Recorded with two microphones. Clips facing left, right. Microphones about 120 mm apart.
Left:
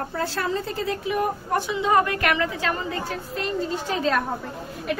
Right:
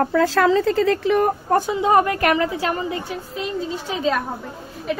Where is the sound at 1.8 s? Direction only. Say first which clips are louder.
Right 2 dB; 25° right (ahead or behind).